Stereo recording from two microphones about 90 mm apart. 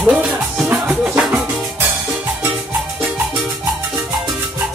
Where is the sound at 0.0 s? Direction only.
15° right (ahead or behind).